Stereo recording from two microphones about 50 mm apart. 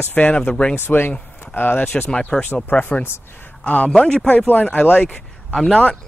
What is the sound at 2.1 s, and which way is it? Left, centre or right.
Speech, centre.